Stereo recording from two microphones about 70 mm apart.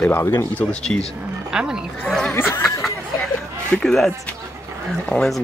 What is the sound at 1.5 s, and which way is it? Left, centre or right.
Speech, centre.